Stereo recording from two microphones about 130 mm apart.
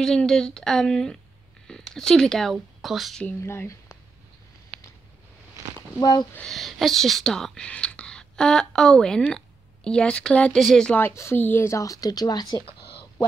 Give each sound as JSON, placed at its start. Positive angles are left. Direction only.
{"t": 0.0, "sound": "speech", "side_deg": 5}
{"t": 3.3, "sound": "speech", "side_deg": 20}
{"t": 4.7, "sound": "a sound", "side_deg": -55}
{"t": 5.9, "sound": "speech", "side_deg": 30}
{"t": 6.3, "sound": "speech", "side_deg": 5}
{"t": 11.0, "sound": "speech", "side_deg": 20}